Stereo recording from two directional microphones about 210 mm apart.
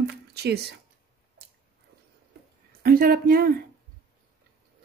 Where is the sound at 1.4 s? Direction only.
50° right (ahead or behind).